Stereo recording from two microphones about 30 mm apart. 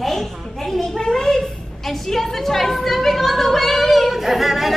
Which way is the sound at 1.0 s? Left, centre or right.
Left.